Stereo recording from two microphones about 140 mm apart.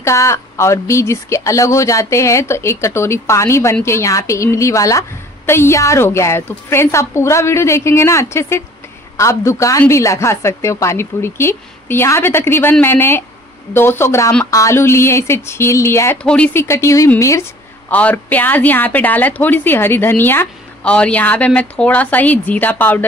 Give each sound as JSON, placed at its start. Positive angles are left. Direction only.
{"t": 0.0, "sound": "a woman's voice", "side_deg": 20}